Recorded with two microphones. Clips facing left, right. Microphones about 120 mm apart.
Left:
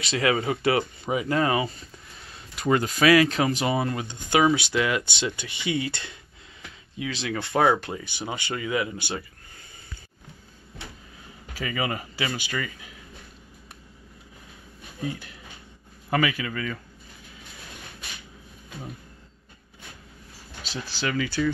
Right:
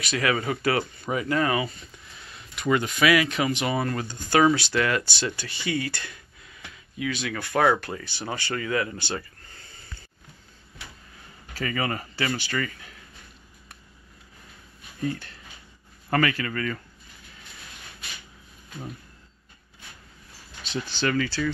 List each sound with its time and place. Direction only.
0.0 s speech: 25° left (ahead or behind)
3.7 s speech: 20° left (ahead or behind)
11.5 s speech: 10° left (ahead or behind)
15.0 s speech: 10° left (ahead or behind)
21.0 s speech: 5° left (ahead or behind)